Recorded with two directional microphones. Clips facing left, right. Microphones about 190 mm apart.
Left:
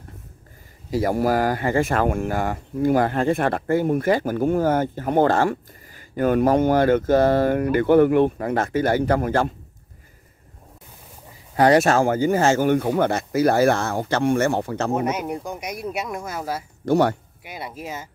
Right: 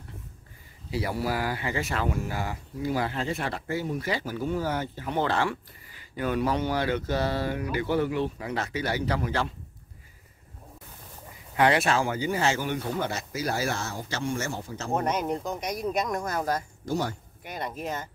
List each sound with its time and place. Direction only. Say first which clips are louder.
0.8 s speech: left 9 dB; 45° left (ahead or behind)
11.5 s speech: left 7 dB; 40° left (ahead or behind); by 14.9 s 65° left (ahead or behind)
15.0 s speech: left 3 dB; 10° left (ahead or behind)
16.8 s speech: left 14 dB; 65° left (ahead or behind)
17.4 s speech: even; 10° left (ahead or behind)